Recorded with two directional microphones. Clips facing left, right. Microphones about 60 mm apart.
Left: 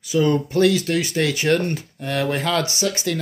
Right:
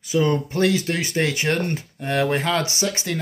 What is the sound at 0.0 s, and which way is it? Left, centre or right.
Speech, right.